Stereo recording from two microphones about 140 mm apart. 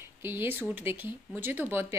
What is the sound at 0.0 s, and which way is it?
A woman's voice, 15° right (ahead or behind).